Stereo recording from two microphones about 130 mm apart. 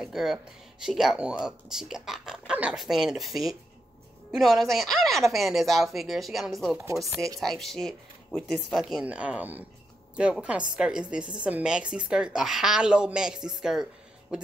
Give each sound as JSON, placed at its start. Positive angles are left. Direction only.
{"t": 0.0, "sound": "speech", "side_deg": -5}
{"t": 6.8, "sound": "speech", "side_deg": -25}
{"t": 7.3, "sound": "speech", "side_deg": 0}